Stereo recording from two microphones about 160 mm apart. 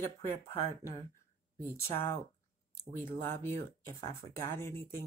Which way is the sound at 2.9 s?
15° left (ahead or behind).